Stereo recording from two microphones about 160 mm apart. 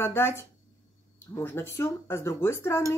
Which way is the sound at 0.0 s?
15° left (ahead or behind).